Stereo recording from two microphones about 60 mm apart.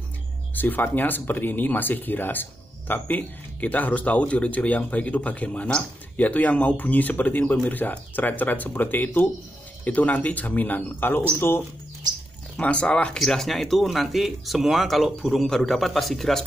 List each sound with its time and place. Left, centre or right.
0.6 s speech: left
12.5 s speech: centre
13.2 s speech: centre